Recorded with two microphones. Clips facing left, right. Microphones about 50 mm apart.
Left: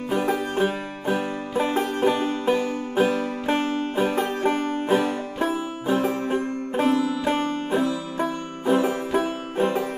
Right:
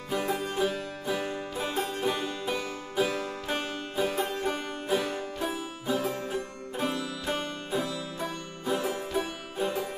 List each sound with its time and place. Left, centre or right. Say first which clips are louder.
0.1 s music: left 6 dB; left